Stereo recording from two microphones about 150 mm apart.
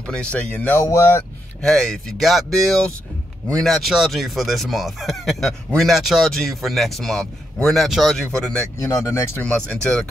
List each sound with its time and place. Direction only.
0.0 s speech: 5° left (ahead or behind)
1.6 s speech: centre (ahead or behind)
8.7 s speech: 20° left (ahead or behind)
9.4 s speech: 5° left (ahead or behind)